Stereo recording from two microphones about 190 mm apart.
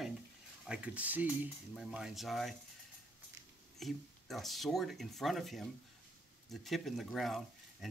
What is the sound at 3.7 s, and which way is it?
Speech, centre (ahead or behind).